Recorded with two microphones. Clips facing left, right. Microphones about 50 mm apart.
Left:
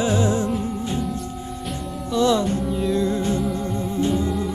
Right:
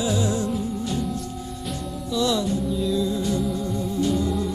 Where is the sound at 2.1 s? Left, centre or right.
Left.